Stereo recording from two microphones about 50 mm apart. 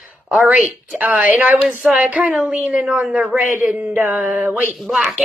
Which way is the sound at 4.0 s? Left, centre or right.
Right.